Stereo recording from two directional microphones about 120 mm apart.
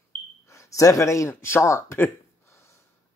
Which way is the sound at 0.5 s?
25° left (ahead or behind).